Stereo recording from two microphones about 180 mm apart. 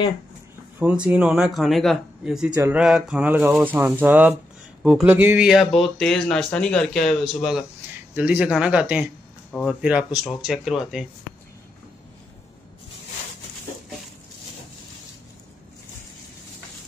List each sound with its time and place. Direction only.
0.7 s speech: 5° right (ahead or behind)
2.5 s speech: 15° right (ahead or behind)
2.8 s speech: 5° right (ahead or behind)